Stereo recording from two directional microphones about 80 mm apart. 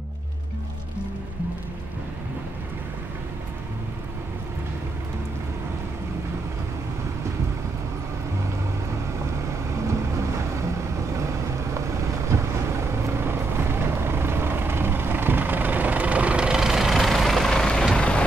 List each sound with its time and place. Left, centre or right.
12.3 s vehicle: right; by 18.2 s centre